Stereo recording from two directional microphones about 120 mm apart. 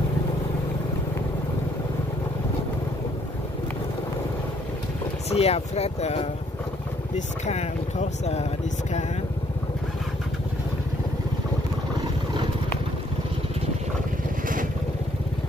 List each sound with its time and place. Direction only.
5.3 s speech: 60° left (ahead or behind)
7.2 s speech: 75° left (ahead or behind)